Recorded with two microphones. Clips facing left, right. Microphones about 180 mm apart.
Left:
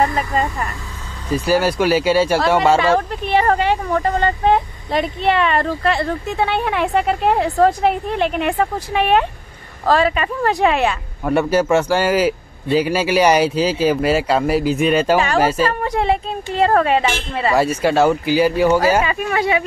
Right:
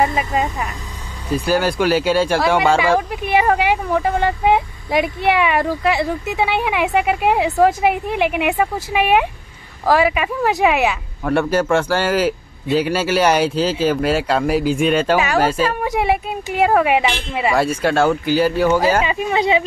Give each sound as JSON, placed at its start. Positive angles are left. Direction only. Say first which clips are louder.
{"t": 0.0, "sound": "speech", "louder": "even", "side_deg": -5}
{"t": 2.8, "sound": "speech", "louder": "even", "side_deg": -10}
{"t": 11.2, "sound": "speech", "louder": "left 1 dB", "side_deg": 5}
{"t": 17.6, "sound": "speech", "louder": "left 2 dB", "side_deg": 5}
{"t": 19.0, "sound": "speech", "louder": "right 1 dB", "side_deg": -20}